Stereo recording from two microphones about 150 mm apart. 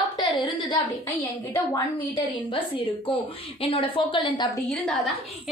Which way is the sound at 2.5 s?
35° left (ahead or behind).